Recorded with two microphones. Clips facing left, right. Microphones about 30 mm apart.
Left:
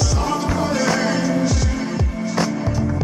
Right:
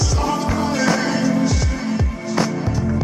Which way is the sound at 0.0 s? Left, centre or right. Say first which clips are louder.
Even; centre.